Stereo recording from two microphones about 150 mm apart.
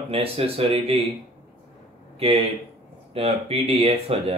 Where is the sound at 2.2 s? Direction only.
40° right (ahead or behind).